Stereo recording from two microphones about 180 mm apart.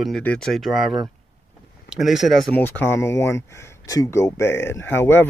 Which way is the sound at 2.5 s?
10° left (ahead or behind).